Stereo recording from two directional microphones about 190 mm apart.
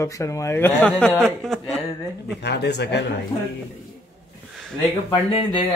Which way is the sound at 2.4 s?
60° left (ahead or behind).